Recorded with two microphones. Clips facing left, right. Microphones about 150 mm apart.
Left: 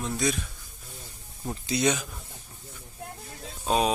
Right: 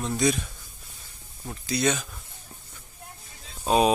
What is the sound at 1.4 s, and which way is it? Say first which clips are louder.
Speech: even; 20° left (ahead or behind).